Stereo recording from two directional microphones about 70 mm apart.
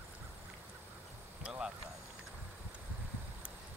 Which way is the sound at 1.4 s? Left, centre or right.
Centre.